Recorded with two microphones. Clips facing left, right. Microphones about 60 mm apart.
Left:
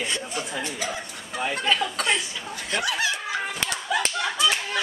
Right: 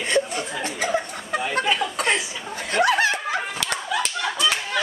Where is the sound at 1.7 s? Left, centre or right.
Centre.